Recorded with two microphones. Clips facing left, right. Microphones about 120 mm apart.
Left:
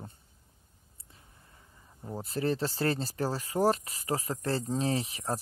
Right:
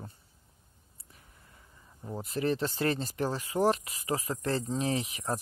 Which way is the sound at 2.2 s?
35° left (ahead or behind).